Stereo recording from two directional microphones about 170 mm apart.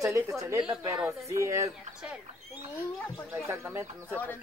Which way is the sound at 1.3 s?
20° right (ahead or behind).